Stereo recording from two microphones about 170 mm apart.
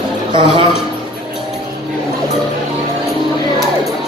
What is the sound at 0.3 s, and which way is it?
Speech, 30° right (ahead or behind).